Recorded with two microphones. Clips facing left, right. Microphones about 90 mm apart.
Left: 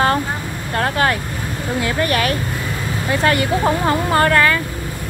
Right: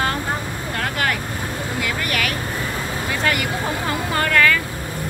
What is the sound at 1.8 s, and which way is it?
Speech, 35° left (ahead or behind).